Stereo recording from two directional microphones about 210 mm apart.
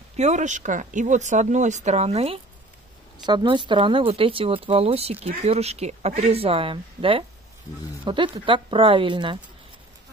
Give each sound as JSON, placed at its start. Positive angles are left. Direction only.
{"t": 0.2, "sound": "speech", "side_deg": -35}